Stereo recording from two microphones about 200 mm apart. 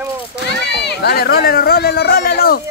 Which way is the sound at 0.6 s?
55° left (ahead or behind).